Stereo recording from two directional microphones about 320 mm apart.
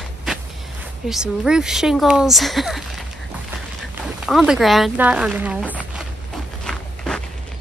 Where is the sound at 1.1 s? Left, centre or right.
Centre.